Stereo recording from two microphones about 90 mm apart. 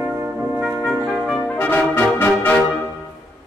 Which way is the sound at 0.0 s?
30° right (ahead or behind).